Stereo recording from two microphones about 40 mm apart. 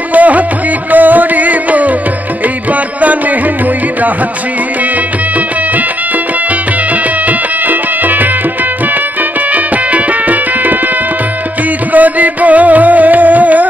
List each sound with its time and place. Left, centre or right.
0.1 s music: right
7.2 s music: right
9.5 s music: right
11.9 s music: right